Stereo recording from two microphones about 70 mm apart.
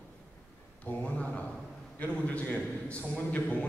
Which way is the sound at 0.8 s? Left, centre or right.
Centre.